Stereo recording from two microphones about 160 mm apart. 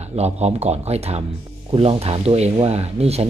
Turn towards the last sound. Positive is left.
turn(degrees=-40)  # may be behind; listen again after turning